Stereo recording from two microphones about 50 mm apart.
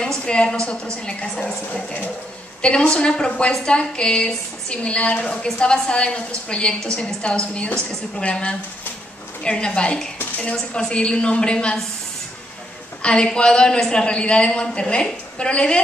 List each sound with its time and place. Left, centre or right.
0.0 s a woman's voice: centre
2.6 s a woman's voice: centre
13.0 s a woman's voice: centre